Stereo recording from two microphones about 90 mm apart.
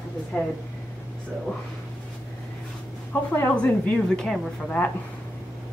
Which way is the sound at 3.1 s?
20° left (ahead or behind).